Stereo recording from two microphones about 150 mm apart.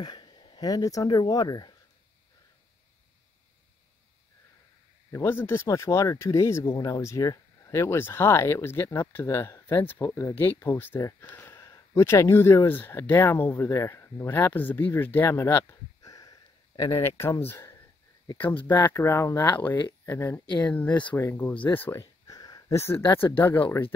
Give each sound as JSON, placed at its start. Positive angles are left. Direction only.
{"t": 0.0, "sound": "speech", "side_deg": 30}
{"t": 5.1, "sound": "speech", "side_deg": 15}
{"t": 22.0, "sound": "a sound", "side_deg": 25}
{"t": 23.1, "sound": "speech", "side_deg": 15}